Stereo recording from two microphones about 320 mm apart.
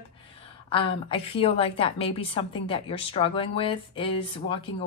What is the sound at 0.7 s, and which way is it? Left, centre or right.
A woman's voice, centre.